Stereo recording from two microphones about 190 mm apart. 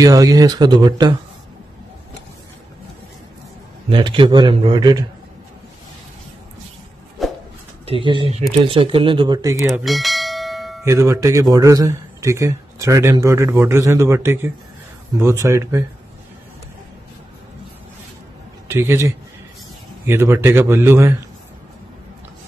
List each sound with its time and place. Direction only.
0.0 s speech: 20° right (ahead or behind)
3.9 s speech: 25° right (ahead or behind)
7.2 s a sound: centre (ahead or behind)
7.8 s speech: 25° right (ahead or behind)
9.7 s bell: centre (ahead or behind)
10.8 s speech: 15° right (ahead or behind)
18.7 s speech: 15° right (ahead or behind)